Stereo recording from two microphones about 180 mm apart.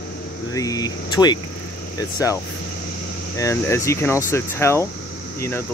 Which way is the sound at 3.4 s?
15° left (ahead or behind).